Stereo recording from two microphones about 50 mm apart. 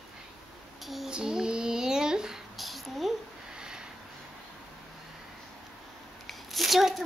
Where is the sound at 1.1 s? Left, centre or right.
Centre.